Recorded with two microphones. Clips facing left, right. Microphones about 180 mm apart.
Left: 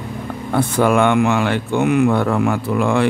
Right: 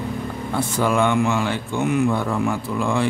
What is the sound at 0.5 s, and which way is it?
Speech, 60° left (ahead or behind).